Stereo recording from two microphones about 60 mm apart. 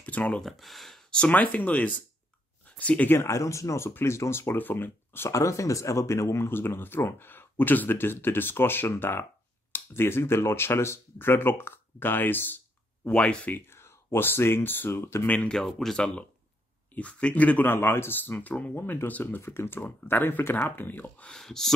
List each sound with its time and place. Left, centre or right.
0.0 s a sound: left
0.4 s speech: centre
1.1 s speech: left
3.1 s speech: left
5.3 s speech: left
13.1 s speech: centre
13.7 s speech: left
15.2 s speech: left
15.5 s speech: centre
16.9 s speech: left
17.6 s speech: left
18.8 s speech: left
21.3 s speech: centre